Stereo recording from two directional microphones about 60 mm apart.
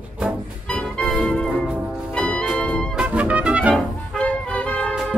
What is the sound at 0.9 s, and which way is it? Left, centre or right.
Music, centre.